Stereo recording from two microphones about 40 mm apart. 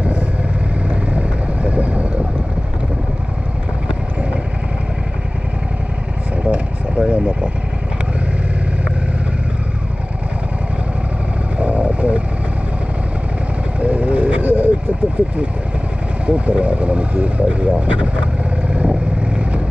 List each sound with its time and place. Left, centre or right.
0.8 s vehicle: right
7.0 s vehicle: right
11.5 s vehicle: right
13.7 s vehicle: right
16.3 s vehicle: right